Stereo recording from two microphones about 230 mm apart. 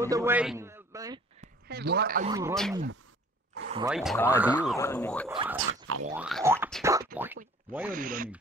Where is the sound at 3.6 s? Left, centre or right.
Right.